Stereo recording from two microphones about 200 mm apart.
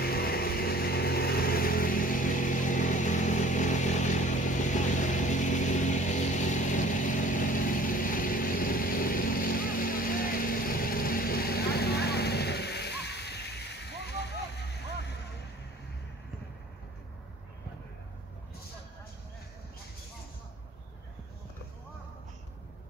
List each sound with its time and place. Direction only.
0.0 s vehicle: 50° left (ahead or behind)